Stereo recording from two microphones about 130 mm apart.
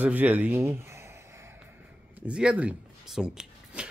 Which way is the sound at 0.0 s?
10° right (ahead or behind).